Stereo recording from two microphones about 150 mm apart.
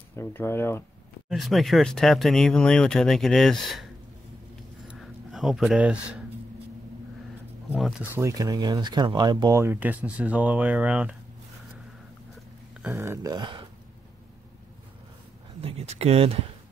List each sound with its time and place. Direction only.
0.1 s speech: 15° left (ahead or behind)
1.3 s speech: centre (ahead or behind)
4.8 s a sound: centre (ahead or behind)
8.0 s speech: 15° right (ahead or behind)
12.8 s a sound: 15° right (ahead or behind); by 13.7 s 30° right (ahead or behind)
15.6 s speech: 45° right (ahead or behind)